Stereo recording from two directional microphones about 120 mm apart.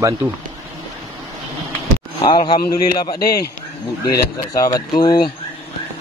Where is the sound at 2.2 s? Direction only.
40° left (ahead or behind).